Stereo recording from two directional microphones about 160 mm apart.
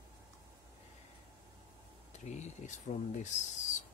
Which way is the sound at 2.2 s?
45° left (ahead or behind).